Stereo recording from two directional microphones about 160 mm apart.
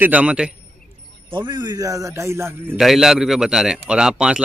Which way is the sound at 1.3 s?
30° right (ahead or behind).